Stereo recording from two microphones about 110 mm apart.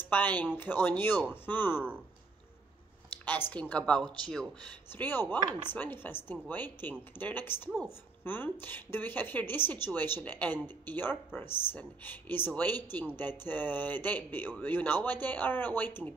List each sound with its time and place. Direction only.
0.0 s speech: 15° left (ahead or behind)
3.3 s speech: 15° left (ahead or behind)
4.9 s speech: 20° left (ahead or behind)